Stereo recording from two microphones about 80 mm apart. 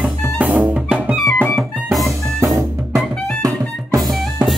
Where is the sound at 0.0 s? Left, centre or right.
Centre.